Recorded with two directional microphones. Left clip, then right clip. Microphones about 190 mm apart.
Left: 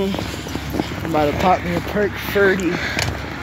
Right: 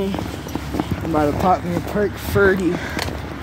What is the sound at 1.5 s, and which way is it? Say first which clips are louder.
Speech: left 1 dB; 75° right (ahead or behind).